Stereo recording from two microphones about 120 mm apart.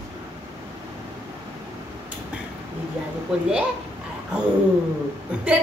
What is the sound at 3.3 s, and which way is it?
Speech, 10° right (ahead or behind).